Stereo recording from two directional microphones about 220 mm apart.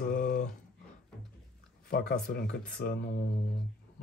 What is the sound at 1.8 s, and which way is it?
Speech, 45° left (ahead or behind).